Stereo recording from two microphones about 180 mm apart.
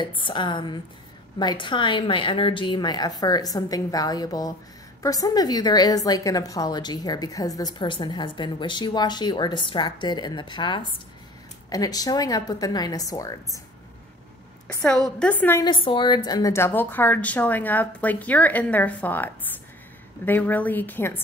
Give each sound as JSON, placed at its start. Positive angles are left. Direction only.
{"t": 0.0, "sound": "a woman's voice", "side_deg": 25}
{"t": 15.0, "sound": "a woman's voice", "side_deg": 5}
{"t": 15.6, "sound": "a woman's voice", "side_deg": 30}